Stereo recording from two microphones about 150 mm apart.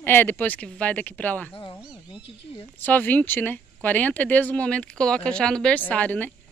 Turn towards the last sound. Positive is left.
turn(degrees=10)  # may be behind; listen again after turning